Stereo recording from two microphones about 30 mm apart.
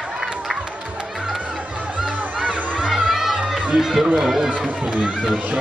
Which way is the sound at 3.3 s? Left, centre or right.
Right.